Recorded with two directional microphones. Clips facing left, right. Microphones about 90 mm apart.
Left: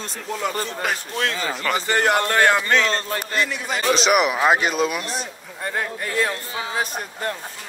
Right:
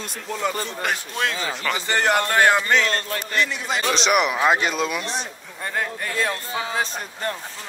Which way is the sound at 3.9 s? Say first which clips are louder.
Left 2 dB; centre (ahead or behind).